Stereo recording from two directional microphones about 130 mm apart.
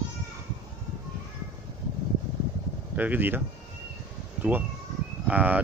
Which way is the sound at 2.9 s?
15° right (ahead or behind).